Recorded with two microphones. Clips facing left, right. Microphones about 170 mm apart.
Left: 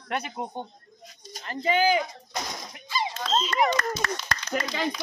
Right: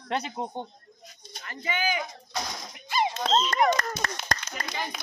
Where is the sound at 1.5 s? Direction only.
30° left (ahead or behind).